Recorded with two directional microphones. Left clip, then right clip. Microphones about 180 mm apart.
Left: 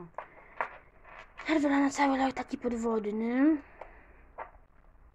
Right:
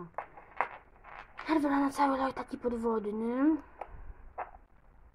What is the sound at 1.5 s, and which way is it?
A woman's voice, 10° left (ahead or behind).